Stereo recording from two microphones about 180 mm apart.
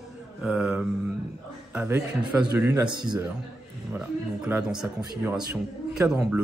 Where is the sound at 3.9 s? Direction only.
5° right (ahead or behind).